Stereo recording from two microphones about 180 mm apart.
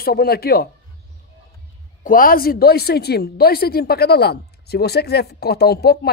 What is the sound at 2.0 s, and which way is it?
Speech, 50° left (ahead or behind).